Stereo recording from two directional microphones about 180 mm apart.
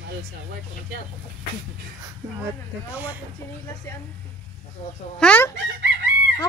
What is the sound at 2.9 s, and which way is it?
Speech, 10° right (ahead or behind).